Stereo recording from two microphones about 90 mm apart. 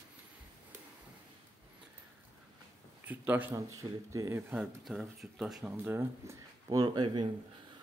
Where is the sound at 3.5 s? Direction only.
40° right (ahead or behind); by 4.6 s 25° right (ahead or behind).